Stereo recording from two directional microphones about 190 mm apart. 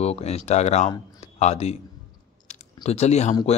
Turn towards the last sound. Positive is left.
turn(degrees=35)  # may be behind; listen again after turning